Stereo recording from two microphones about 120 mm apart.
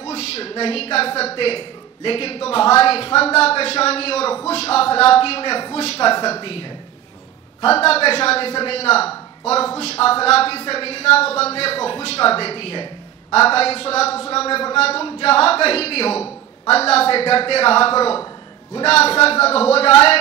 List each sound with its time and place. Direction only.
0.0 s a man's voice: 60° left (ahead or behind)
7.6 s a man's voice: 55° left (ahead or behind)